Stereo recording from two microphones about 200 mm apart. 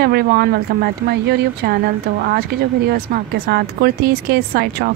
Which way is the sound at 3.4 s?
50° right (ahead or behind).